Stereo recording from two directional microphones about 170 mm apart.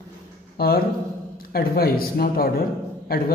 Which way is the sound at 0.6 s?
65° left (ahead or behind).